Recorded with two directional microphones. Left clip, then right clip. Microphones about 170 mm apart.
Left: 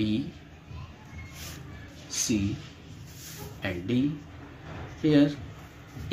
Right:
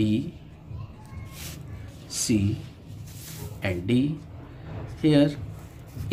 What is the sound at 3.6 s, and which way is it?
Speech, 15° right (ahead or behind).